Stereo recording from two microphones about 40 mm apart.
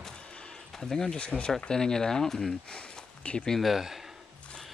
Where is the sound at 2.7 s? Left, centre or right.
Left.